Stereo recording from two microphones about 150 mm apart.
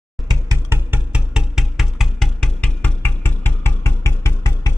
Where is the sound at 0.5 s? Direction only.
15° right (ahead or behind).